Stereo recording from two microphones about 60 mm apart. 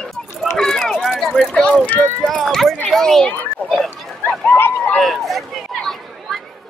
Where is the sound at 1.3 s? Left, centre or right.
Centre.